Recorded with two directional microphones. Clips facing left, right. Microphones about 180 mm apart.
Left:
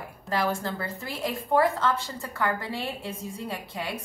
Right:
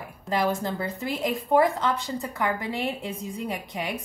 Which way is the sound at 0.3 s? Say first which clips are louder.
Right 2 dB; 20° right (ahead or behind).